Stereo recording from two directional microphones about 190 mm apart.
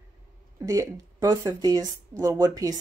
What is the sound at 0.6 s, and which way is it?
Speech, 15° right (ahead or behind).